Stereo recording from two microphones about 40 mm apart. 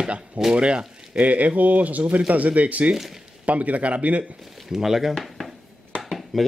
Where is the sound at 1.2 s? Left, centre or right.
Right.